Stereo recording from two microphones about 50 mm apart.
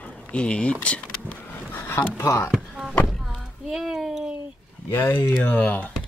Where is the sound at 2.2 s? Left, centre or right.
Left.